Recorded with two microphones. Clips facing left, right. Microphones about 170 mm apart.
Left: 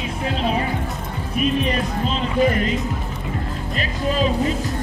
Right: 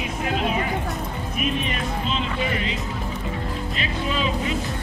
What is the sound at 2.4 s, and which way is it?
Speech, 45° left (ahead or behind).